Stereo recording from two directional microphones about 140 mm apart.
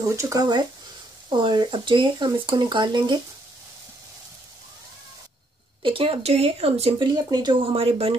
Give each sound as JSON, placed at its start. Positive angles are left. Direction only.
{"t": 0.0, "sound": "speech", "side_deg": -20}
{"t": 5.8, "sound": "speech", "side_deg": -40}
{"t": 7.6, "sound": "speech", "side_deg": -45}